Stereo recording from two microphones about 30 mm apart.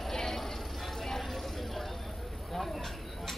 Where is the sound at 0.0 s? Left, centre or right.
Centre.